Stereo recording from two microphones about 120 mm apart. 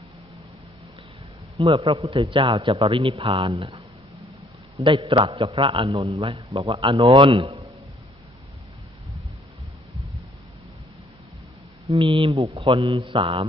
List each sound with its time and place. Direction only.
1.6 s a man's voice: 50° right (ahead or behind)
4.8 s a man's voice: 45° right (ahead or behind)
11.9 s a man's voice: 50° right (ahead or behind)